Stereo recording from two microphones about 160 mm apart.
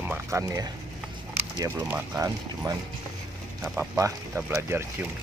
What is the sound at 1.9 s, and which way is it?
Speech, 15° right (ahead or behind).